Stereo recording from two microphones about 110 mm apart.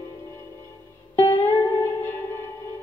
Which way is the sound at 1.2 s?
25° left (ahead or behind).